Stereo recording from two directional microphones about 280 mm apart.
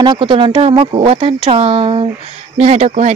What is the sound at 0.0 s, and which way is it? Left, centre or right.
Speech, centre.